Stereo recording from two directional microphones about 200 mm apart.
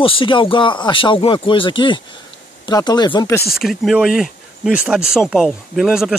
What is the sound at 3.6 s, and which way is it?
Speech, centre (ahead or behind).